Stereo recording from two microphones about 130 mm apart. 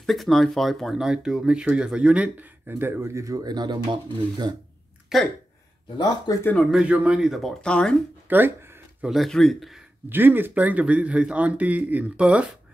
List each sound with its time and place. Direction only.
0.0 s speech: centre (ahead or behind); by 4.5 s 35° right (ahead or behind)
5.1 s speech: centre (ahead or behind)
5.9 s speech: 30° left (ahead or behind)
6.4 s speech: 5° left (ahead or behind)
8.3 s speech: 15° right (ahead or behind)
9.0 s speech: centre (ahead or behind)
10.0 s speech: 15° right (ahead or behind)